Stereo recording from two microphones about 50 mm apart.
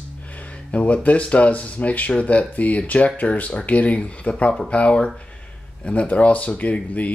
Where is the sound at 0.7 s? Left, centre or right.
Left.